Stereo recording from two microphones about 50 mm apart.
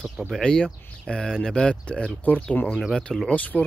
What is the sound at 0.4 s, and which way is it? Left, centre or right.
Speech, centre.